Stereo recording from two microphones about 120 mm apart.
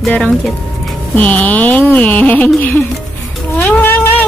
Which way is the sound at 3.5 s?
15° left (ahead or behind).